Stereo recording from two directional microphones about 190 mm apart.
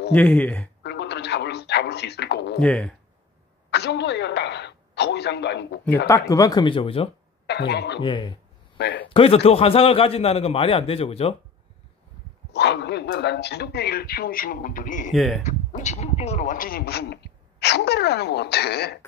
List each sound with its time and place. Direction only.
0.1 s speech: 5° left (ahead or behind)
0.8 s a sound: 65° left (ahead or behind)
2.6 s speech: 5° left (ahead or behind)
3.7 s a sound: 65° left (ahead or behind)
6.0 s speech: 15° left (ahead or behind)
7.4 s speech: 60° left (ahead or behind)
8.0 s speech: 25° left (ahead or behind)
8.7 s a sound: 60° left (ahead or behind)
9.1 s a man's voice: 30° left (ahead or behind)
12.5 s a man's voice: 65° left (ahead or behind); by 15.1 s 45° left (ahead or behind)
15.1 s speech: centre (ahead or behind)
15.4 s a man's voice: 40° left (ahead or behind); by 18.9 s 60° left (ahead or behind)